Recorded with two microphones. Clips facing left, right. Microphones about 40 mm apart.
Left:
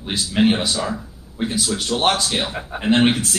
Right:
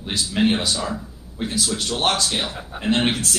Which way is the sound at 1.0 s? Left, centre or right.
Centre.